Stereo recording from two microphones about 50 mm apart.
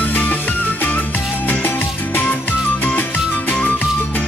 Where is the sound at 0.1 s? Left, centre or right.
Left.